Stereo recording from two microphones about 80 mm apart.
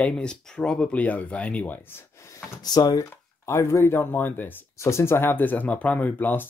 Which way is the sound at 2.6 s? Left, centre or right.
Left.